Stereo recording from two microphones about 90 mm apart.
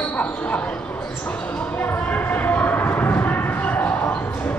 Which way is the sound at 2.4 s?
20° left (ahead or behind).